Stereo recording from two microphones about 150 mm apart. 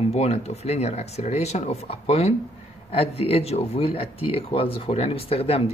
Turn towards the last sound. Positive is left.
turn(degrees=40)  # may be behind; listen again after turning